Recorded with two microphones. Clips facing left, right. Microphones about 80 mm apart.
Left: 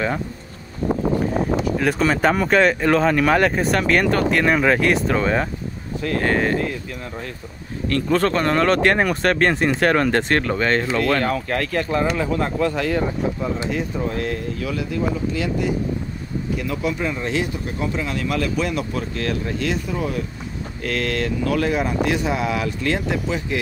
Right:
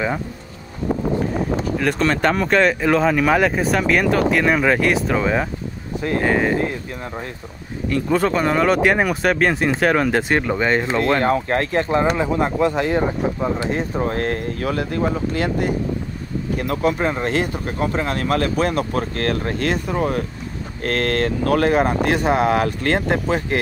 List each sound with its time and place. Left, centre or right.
1.8 s speech: centre
7.9 s speech: centre
10.9 s speech: right